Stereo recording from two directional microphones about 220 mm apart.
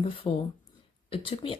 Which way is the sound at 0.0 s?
25° left (ahead or behind).